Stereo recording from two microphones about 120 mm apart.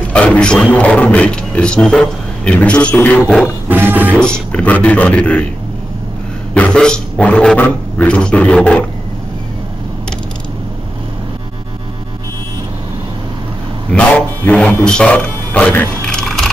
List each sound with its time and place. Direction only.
0.1 s speech: 10° left (ahead or behind)
3.6 s music: 15° right (ahead or behind)
4.2 s speech: 10° left (ahead or behind)
6.5 s speech: 10° left (ahead or behind)
13.9 s music: 10° left (ahead or behind)